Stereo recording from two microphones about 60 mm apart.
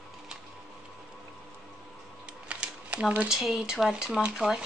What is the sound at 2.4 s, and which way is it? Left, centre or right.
Camera, centre.